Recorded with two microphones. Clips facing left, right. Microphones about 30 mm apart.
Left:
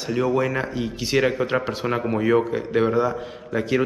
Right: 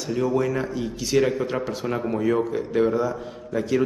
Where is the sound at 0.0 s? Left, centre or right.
Left.